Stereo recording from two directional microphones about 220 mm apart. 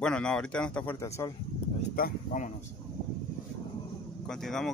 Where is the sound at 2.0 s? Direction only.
40° left (ahead or behind).